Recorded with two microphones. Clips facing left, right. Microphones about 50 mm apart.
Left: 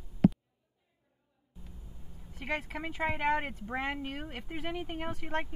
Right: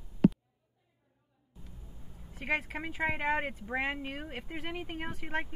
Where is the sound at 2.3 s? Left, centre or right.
Centre.